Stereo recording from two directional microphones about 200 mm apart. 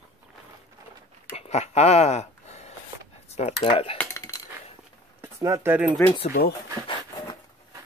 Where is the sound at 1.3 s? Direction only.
30° left (ahead or behind).